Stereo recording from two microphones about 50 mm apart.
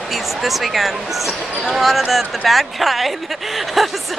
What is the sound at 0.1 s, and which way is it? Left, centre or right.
Speech, centre.